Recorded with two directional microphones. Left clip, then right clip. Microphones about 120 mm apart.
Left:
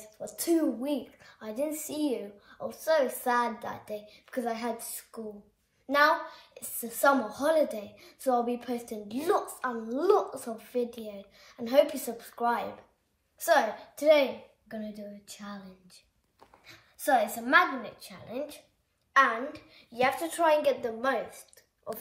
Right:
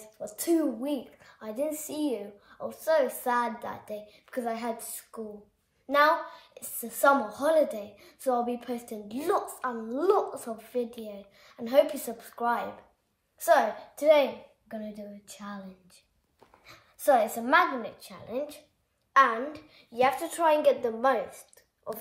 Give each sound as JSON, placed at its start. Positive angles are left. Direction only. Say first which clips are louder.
{"t": 0.2, "sound": "a woman's voice", "louder": "right 1 dB", "side_deg": -15}
{"t": 16.6, "sound": "a woman's voice", "louder": "right 5 dB", "side_deg": -45}